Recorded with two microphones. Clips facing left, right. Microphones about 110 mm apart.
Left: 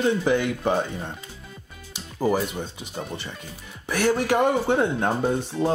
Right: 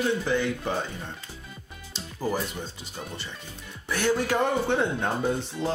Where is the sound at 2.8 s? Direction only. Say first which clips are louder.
Left 5 dB; 15° left (ahead or behind).